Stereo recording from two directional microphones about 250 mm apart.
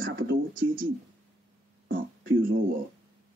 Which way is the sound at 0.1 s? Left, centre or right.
Right.